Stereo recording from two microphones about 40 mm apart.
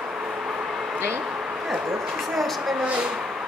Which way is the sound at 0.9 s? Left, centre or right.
Right.